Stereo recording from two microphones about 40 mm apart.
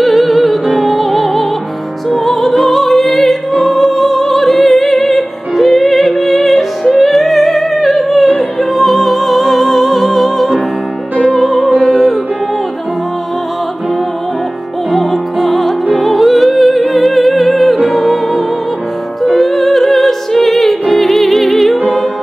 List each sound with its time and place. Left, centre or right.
0.0 s music: centre
11.8 s music: centre
14.9 s music: centre
17.7 s music: centre
18.0 s music: centre
19.3 s opera: centre
21.0 s music: centre